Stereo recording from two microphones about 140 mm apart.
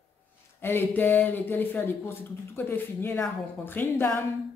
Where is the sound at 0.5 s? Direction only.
15° left (ahead or behind).